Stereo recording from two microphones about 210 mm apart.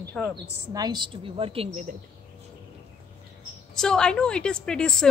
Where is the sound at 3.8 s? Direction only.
5° left (ahead or behind).